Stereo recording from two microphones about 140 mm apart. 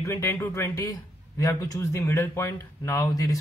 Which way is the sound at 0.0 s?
20° left (ahead or behind).